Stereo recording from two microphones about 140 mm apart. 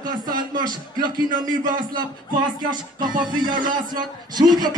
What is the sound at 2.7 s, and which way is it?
Speech, 30° right (ahead or behind).